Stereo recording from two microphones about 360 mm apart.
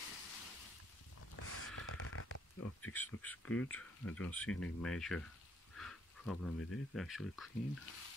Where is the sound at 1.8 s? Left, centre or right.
Left.